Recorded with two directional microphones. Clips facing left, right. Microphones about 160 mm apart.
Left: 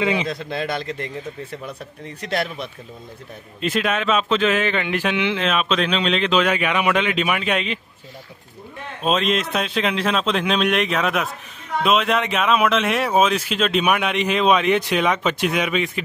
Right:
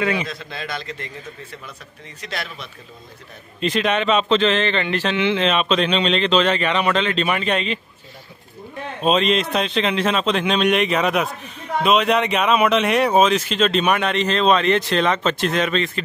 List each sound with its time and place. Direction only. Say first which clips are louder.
0.0 s a man's voice: left 1 dB; 20° left (ahead or behind)
0.3 s a man's voice: left 5 dB; 55° left (ahead or behind)
2.2 s a man's voice: left 6 dB; 55° left (ahead or behind)
3.6 s speech: right 2 dB; 5° left (ahead or behind)
9.0 s speech: right 2 dB; centre (ahead or behind)